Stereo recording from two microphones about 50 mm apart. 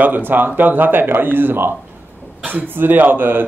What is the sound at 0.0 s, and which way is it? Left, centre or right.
Speech, right.